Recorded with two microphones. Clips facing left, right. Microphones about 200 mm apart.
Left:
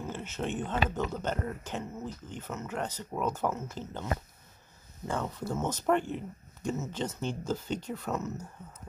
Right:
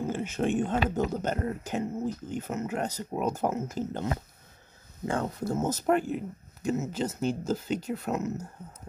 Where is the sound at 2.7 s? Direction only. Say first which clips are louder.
Right 4 dB; 40° right (ahead or behind).